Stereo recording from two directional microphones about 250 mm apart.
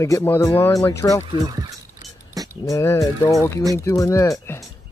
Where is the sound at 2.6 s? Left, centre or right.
Centre.